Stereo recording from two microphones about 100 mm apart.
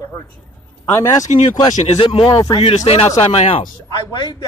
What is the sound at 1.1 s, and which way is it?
Speech, 40° left (ahead or behind).